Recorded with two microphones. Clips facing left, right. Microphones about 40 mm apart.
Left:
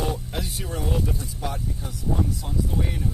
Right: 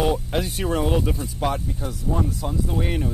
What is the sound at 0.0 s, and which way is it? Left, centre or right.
Speech, right.